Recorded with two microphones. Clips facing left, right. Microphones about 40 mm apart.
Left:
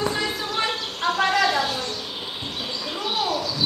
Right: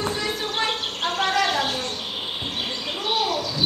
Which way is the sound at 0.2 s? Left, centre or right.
Right.